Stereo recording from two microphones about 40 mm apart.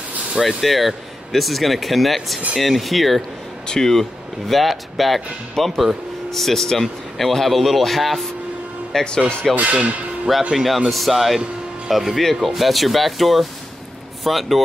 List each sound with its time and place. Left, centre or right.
0.4 s speech: centre
3.2 s speech: centre
3.9 s speech: centre
8.9 s speech: centre
9.6 s speech: right
10.5 s speech: centre